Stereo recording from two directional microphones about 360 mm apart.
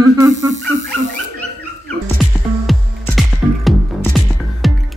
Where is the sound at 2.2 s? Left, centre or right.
Centre.